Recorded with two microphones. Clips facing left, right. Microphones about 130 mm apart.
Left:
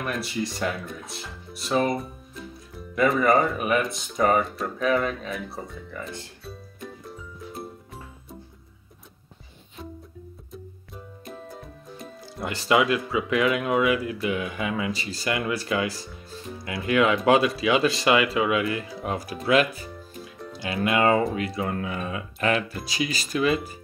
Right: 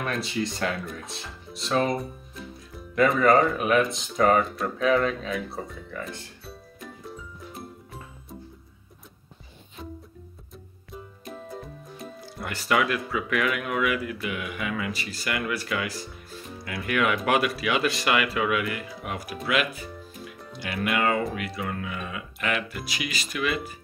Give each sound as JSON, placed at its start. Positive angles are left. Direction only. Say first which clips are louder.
{"t": 0.0, "sound": "speech", "louder": "even", "side_deg": 5}
{"t": 7.6, "sound": "music", "louder": "left 4 dB", "side_deg": 0}
{"t": 10.5, "sound": "music", "louder": "even", "side_deg": 0}
{"t": 12.4, "sound": "speech", "louder": "left 3 dB", "side_deg": 20}